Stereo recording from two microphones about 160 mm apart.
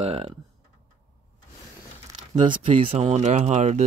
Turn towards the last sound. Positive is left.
turn(degrees=-45)  # may be behind; listen again after turning